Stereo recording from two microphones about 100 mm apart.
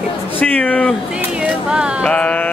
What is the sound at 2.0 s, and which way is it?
Speech, 15° left (ahead or behind).